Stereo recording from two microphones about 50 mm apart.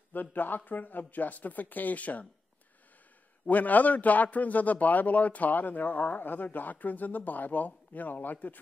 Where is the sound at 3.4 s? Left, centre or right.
Left.